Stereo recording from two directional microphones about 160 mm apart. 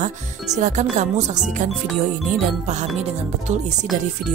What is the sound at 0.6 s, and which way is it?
Music, 50° right (ahead or behind).